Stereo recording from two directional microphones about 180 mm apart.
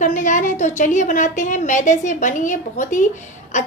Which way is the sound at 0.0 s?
45° left (ahead or behind).